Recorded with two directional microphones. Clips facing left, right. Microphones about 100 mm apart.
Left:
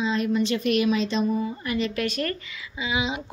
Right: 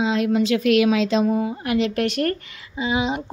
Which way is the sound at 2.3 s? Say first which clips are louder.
Right 4 dB; 55° right (ahead or behind).